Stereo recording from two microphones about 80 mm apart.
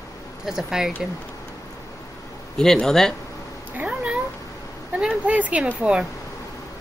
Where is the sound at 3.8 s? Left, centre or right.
Centre.